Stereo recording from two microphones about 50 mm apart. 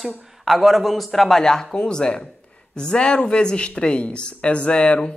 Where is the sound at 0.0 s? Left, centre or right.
Centre.